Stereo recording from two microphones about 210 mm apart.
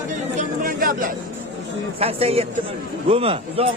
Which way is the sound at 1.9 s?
30° right (ahead or behind).